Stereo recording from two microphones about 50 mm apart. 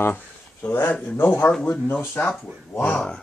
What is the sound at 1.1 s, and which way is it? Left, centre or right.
Speech, left.